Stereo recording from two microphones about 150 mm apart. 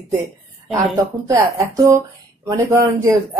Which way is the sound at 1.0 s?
20° right (ahead or behind).